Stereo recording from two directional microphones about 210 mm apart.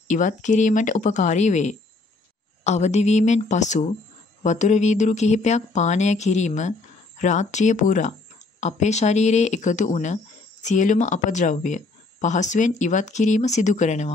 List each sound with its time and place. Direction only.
0.1 s speech: 35° left (ahead or behind)